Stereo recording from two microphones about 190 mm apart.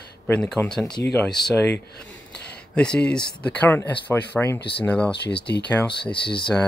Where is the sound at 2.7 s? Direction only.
5° left (ahead or behind).